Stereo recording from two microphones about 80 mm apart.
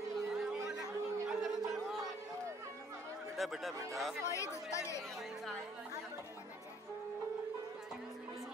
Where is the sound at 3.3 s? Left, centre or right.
Centre.